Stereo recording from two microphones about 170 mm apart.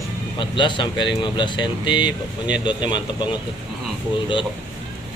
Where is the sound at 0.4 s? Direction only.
30° left (ahead or behind).